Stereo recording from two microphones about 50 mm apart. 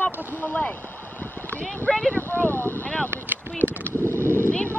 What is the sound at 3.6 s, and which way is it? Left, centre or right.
Speech, right.